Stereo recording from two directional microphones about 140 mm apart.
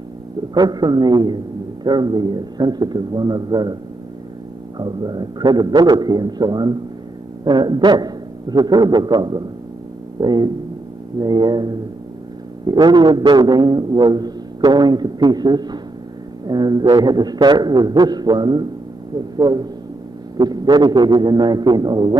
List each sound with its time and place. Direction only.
0.6 s a man's voice: 30° right (ahead or behind)
4.7 s a man's voice: 30° right (ahead or behind)